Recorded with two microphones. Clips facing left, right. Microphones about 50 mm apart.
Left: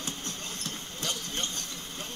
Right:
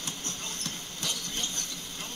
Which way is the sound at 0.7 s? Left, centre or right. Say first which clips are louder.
Left 2 dB; left.